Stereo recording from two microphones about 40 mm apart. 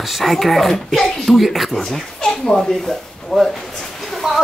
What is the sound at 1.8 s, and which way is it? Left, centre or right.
Speech, centre.